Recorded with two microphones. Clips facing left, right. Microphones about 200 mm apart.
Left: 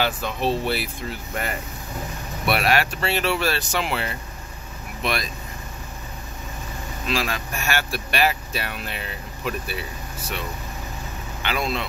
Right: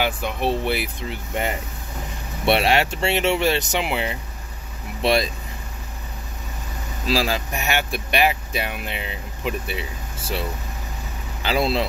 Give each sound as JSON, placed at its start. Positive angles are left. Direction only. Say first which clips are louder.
{"t": 0.0, "sound": "speech", "louder": "right 1 dB", "side_deg": -15}
{"t": 5.0, "sound": "speech", "louder": "right 7 dB", "side_deg": -30}
{"t": 7.1, "sound": "speech", "louder": "right 4 dB", "side_deg": -30}
{"t": 7.5, "sound": "speech", "louder": "right 2 dB", "side_deg": -20}
{"t": 11.4, "sound": "speech", "louder": "right 5 dB", "side_deg": -30}